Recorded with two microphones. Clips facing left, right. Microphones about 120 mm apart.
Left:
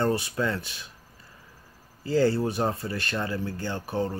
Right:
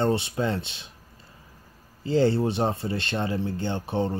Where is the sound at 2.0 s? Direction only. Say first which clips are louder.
Right 1 dB; 25° right (ahead or behind).